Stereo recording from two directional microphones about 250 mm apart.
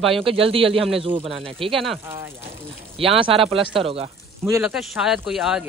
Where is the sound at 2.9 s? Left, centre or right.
Right.